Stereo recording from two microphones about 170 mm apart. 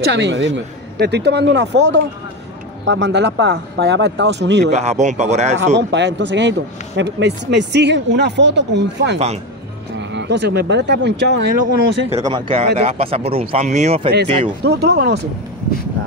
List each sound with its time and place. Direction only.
0.0 s speech: 90° right
4.7 s speech: 40° right (ahead or behind)
5.8 s speech: 90° right
12.2 s speech: 25° right (ahead or behind)
14.6 s speech: 70° right (ahead or behind)